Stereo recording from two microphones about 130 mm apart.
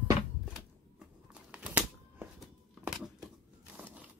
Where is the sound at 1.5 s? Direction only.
10° right (ahead or behind).